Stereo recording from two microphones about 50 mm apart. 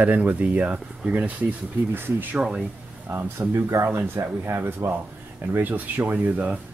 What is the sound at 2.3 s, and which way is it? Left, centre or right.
Speech, centre.